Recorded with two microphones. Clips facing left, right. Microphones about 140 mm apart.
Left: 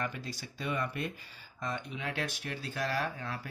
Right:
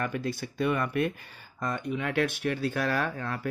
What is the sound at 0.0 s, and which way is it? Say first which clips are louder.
Speech: right 7 dB; 55° right (ahead or behind).